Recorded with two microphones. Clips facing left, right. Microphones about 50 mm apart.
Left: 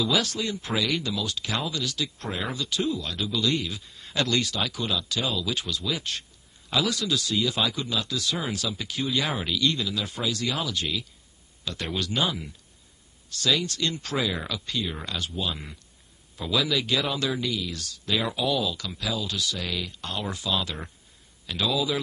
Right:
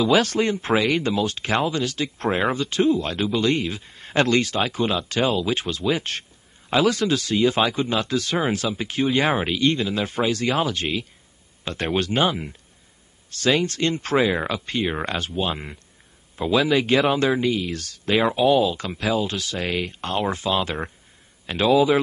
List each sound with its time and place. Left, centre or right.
0.0 s a man's voice: right